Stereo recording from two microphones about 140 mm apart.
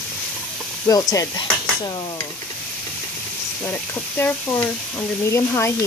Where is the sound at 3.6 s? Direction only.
15° left (ahead or behind).